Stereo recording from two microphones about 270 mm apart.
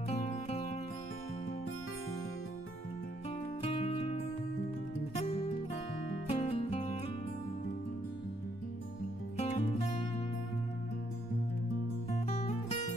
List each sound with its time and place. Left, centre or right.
0.1 s music: left
3.6 s music: left
9.4 s music: left
12.1 s music: left